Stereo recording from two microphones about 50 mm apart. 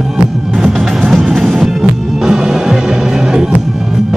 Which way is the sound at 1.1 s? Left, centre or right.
Centre.